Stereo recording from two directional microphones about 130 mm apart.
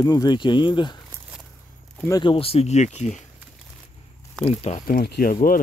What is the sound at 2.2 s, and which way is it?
Speech, 45° left (ahead or behind).